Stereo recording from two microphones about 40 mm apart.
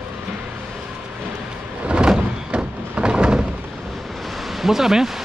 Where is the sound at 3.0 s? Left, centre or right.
Right.